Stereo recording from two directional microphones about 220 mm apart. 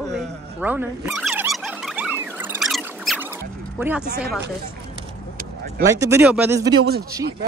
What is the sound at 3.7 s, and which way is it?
Speech, 5° right (ahead or behind).